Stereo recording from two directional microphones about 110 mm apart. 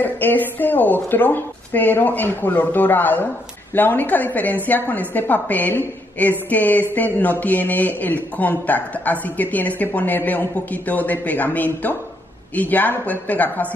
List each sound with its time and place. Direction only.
0.0 s a man's voice: 15° left (ahead or behind)